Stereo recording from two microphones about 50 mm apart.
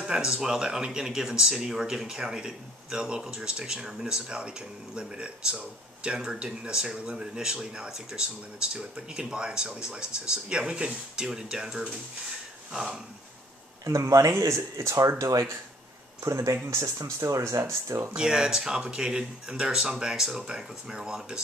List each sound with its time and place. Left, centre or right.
0.0 s speech: centre
13.8 s speech: right
16.7 s speech: right
18.1 s speech: centre